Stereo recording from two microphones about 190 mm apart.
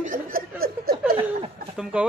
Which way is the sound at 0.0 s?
45° right (ahead or behind).